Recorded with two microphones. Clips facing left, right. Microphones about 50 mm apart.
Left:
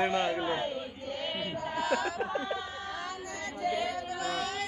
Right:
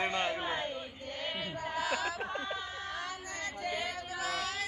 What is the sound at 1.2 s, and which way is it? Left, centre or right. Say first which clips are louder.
Chant: left 2 dB; left.